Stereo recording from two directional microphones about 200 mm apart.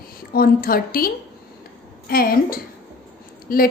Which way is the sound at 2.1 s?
45° left (ahead or behind).